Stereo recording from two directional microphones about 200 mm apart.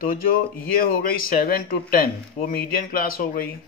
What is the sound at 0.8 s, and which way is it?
A man's voice, 45° left (ahead or behind).